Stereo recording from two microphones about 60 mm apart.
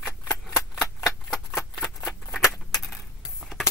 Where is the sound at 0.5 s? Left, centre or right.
Centre.